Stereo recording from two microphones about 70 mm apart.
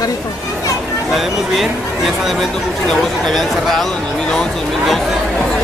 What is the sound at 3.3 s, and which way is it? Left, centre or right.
Speech, centre.